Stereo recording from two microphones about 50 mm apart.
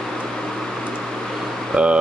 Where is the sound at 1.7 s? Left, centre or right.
Right.